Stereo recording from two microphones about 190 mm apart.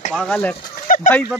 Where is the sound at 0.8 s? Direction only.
45° left (ahead or behind).